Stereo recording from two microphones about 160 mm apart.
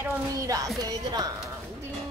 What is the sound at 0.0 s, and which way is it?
A woman's voice, 20° right (ahead or behind).